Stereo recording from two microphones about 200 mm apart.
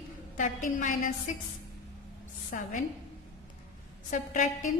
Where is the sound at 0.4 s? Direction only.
40° left (ahead or behind).